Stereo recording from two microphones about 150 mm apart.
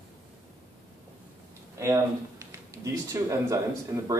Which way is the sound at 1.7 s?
20° right (ahead or behind).